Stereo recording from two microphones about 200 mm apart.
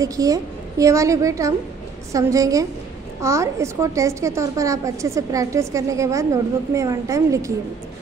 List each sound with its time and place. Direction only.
0.0 s a woman's voice: 15° right (ahead or behind)